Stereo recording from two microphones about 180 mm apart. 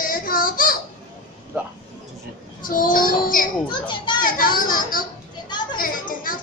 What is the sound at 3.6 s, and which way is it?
Speech, 25° left (ahead or behind).